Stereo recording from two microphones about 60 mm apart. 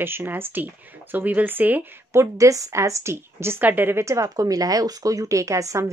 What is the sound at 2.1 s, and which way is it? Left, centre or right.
A woman's voice, right.